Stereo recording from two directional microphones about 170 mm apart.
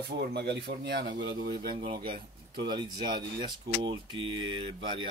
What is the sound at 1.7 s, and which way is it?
Speech, 30° right (ahead or behind).